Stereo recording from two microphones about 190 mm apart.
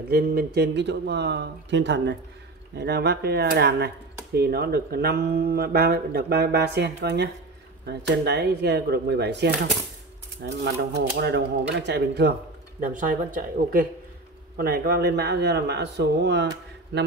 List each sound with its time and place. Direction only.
0.1 s speech: 55° right (ahead or behind)
12.8 s a man's voice: 45° right (ahead or behind); by 17.1 s 65° right (ahead or behind)